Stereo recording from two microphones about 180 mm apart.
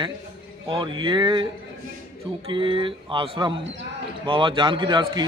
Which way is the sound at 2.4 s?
30° right (ahead or behind).